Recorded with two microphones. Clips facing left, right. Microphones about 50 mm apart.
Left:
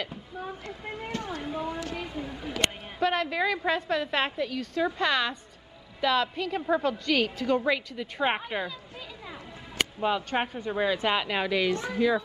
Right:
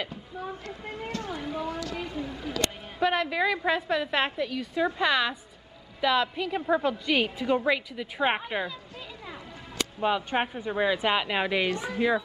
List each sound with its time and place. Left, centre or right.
0.1 s a sound: centre
0.8 s a woman's voice: centre
1.7 s speech: left
2.0 s speech: centre
3.0 s a woman's voice: centre
9.9 s a woman's voice: centre